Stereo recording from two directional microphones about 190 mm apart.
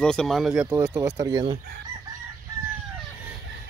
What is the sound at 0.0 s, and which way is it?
Speech, 5° left (ahead or behind).